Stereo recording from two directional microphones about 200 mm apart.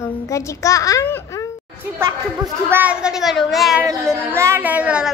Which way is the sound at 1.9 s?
15° right (ahead or behind).